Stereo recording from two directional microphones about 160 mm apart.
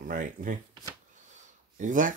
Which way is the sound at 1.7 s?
55° right (ahead or behind).